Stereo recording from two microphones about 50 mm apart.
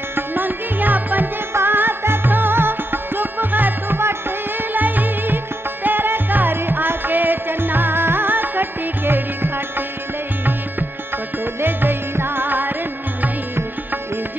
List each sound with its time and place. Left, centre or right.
0.1 s music: right
1.5 s music: right
11.6 s music: right